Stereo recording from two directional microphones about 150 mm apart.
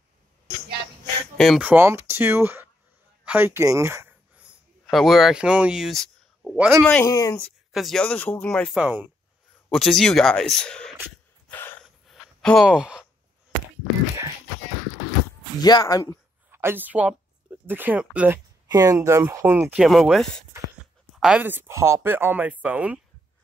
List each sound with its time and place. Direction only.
1.6 s speech: 15° right (ahead or behind)
4.8 s speech: centre (ahead or behind)
7.1 s speech: 25° left (ahead or behind)
7.7 s speech: centre (ahead or behind)
8.7 s speech: 5° right (ahead or behind)
11.4 s a sound: 15° left (ahead or behind)
11.8 s sigh: centre (ahead or behind)
15.6 s speech: 25° left (ahead or behind)
16.5 s speech: 15° right (ahead or behind)
18.7 s speech: 20° right (ahead or behind)
19.8 s speech: centre (ahead or behind)